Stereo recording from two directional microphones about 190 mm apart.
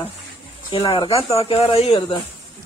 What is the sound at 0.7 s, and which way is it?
Speech, 30° left (ahead or behind).